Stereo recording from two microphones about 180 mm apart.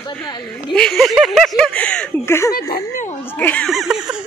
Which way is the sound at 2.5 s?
55° left (ahead or behind).